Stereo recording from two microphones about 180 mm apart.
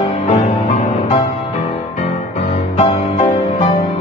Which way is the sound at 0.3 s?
40° left (ahead or behind).